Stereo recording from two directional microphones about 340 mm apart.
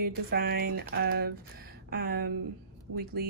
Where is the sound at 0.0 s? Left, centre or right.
Right.